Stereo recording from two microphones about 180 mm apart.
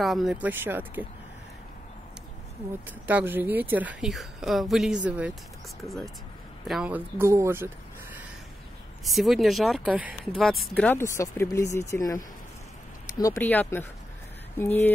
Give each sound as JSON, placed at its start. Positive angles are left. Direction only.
{"t": 0.0, "sound": "a woman's voice", "side_deg": 0}
{"t": 2.9, "sound": "a woman's voice", "side_deg": -10}
{"t": 9.0, "sound": "speech", "side_deg": 0}
{"t": 11.0, "sound": "speech", "side_deg": 15}
{"t": 13.2, "sound": "speech", "side_deg": 15}